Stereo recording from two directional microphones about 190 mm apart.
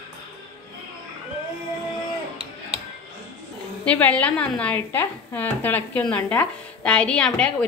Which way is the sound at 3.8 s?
5° left (ahead or behind).